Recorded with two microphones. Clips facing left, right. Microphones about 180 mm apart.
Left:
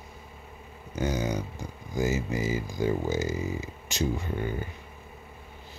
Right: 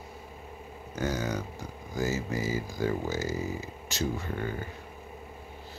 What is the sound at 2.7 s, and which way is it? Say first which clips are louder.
Speech: left 4 dB; 20° left (ahead or behind).